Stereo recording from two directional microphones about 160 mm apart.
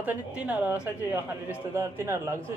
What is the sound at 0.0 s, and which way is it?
A woman's voice, 10° right (ahead or behind).